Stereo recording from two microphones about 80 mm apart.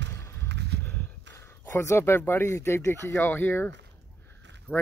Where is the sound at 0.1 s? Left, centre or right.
Left.